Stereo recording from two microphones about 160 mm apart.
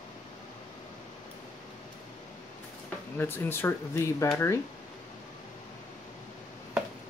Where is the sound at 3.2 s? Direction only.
15° left (ahead or behind).